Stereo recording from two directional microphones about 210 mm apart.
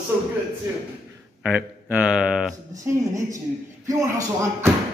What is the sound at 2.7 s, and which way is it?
Speech, 15° right (ahead or behind).